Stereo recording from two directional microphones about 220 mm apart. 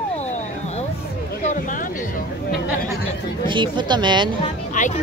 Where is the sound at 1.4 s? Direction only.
35° left (ahead or behind).